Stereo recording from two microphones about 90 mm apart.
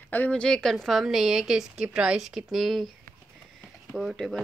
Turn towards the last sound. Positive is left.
turn(degrees=5)  # may be behind; listen again after turning